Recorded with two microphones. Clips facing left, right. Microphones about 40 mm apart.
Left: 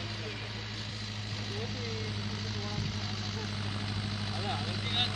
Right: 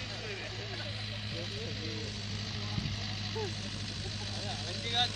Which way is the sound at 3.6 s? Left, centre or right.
Centre.